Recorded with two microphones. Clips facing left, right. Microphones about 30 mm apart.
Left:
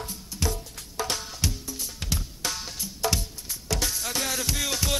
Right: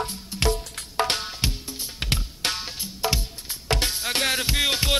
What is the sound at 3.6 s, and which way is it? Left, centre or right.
Music, right.